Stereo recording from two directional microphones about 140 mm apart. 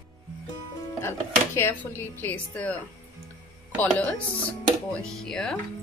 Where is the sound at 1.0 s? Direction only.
15° left (ahead or behind).